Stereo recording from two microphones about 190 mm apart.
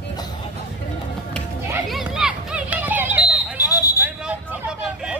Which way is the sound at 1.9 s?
Centre (ahead or behind).